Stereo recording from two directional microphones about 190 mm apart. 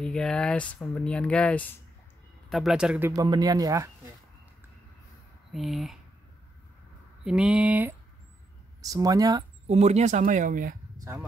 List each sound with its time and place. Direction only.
0.0 s speech: 5° left (ahead or behind)
3.1 s speech: 20° right (ahead or behind)
5.5 s speech: centre (ahead or behind)
7.2 s speech: 5° right (ahead or behind)
8.8 s speech: 20° right (ahead or behind)
9.7 s speech: 35° right (ahead or behind)
11.0 s a sound: 15° right (ahead or behind)